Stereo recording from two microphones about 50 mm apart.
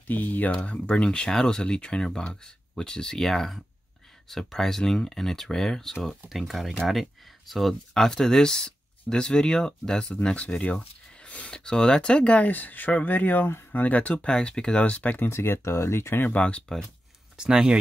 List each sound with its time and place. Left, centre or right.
0.1 s speech: left
0.7 s speech: left
1.0 s speech: centre
6.2 s speech: centre
7.9 s speech: centre
10.2 s speech: left
12.4 s speech: left
14.3 s speech: centre
15.2 s speech: left
16.3 s speech: left
17.4 s speech: centre